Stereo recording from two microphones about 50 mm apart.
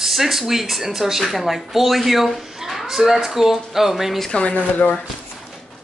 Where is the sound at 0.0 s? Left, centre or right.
Centre.